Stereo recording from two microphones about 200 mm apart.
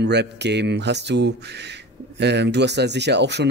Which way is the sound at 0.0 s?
55° right (ahead or behind).